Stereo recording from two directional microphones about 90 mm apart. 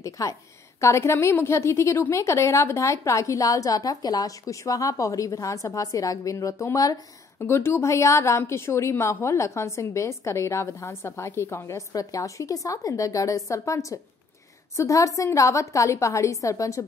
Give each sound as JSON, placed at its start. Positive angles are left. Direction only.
{"t": 0.0, "sound": "a woman's voice", "side_deg": 35}
{"t": 7.3, "sound": "a woman's voice", "side_deg": 25}